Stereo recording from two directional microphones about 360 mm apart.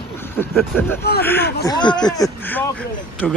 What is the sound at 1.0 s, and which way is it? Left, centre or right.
Speech, left.